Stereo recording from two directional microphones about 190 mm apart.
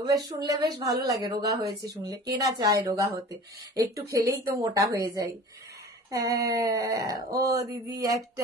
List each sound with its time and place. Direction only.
0.5 s speech: 20° right (ahead or behind)